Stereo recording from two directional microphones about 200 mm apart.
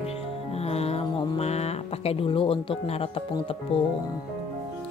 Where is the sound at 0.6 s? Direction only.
30° left (ahead or behind).